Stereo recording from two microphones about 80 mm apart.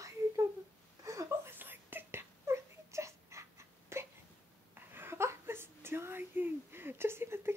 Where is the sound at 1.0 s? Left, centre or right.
Right.